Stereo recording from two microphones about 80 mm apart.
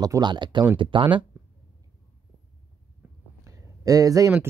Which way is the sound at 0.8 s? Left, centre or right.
Right.